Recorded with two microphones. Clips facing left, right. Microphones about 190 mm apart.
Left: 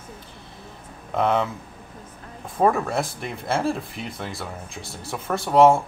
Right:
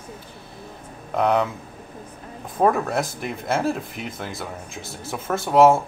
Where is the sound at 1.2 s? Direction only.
Centre (ahead or behind).